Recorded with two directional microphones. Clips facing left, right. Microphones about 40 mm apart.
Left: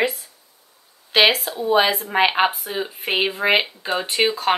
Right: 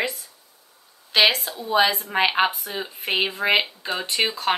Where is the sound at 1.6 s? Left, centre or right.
Centre.